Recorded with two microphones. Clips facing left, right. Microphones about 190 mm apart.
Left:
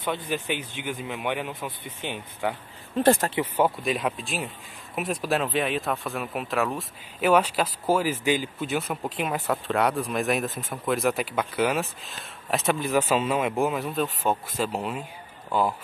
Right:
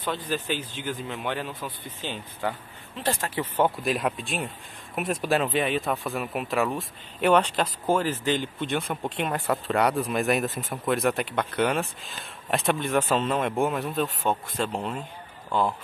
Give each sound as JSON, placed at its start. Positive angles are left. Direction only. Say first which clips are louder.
{"t": 0.5, "sound": "speech", "louder": "even", "side_deg": 65}
{"t": 0.8, "sound": "speech", "louder": "left 2 dB", "side_deg": 10}
{"t": 3.0, "sound": "speech", "louder": "left 9 dB", "side_deg": 50}
{"t": 3.5, "sound": "speech", "louder": "right 2 dB", "side_deg": 0}